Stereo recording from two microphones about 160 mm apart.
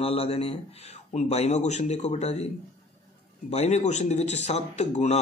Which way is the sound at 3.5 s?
45° left (ahead or behind).